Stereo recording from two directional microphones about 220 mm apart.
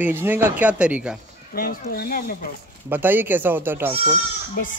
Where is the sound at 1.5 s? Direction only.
40° left (ahead or behind).